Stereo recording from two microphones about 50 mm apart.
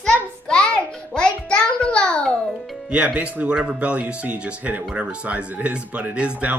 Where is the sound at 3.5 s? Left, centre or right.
Centre.